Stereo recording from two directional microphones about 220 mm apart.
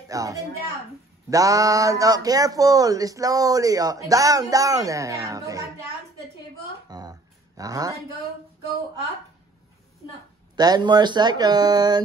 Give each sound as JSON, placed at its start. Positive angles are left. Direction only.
{"t": 0.1, "sound": "a woman's voice", "side_deg": -15}
{"t": 6.9, "sound": "a sound", "side_deg": -15}
{"t": 10.5, "sound": "speech", "side_deg": -20}